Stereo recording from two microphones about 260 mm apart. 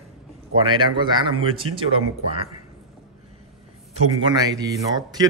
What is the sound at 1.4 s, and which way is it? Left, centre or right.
Speech, centre.